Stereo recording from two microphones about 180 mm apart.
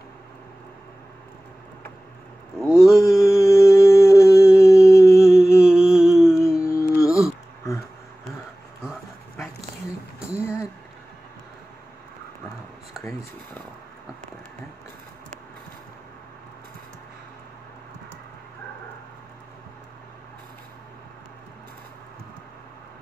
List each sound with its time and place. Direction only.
2.6 s mantra: centre (ahead or behind)
3.1 s humming: 15° left (ahead or behind)
5.6 s humming: 5° right (ahead or behind)
6.3 s a sound: 15° left (ahead or behind)